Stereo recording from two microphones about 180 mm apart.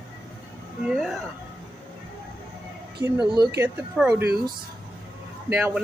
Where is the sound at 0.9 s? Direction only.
Centre (ahead or behind).